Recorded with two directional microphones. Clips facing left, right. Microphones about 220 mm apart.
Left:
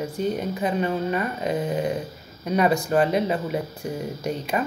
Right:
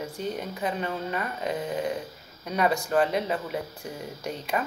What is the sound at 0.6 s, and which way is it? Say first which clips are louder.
Speech: left 6 dB; 15° left (ahead or behind).